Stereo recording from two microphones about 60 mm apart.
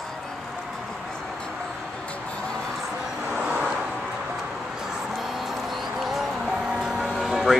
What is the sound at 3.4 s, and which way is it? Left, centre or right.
Vehicle, centre.